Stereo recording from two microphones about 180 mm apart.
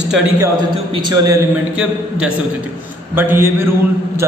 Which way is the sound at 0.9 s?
20° right (ahead or behind).